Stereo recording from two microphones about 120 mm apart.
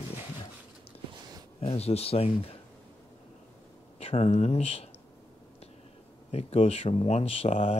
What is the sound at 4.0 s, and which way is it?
Speech, 55° left (ahead or behind).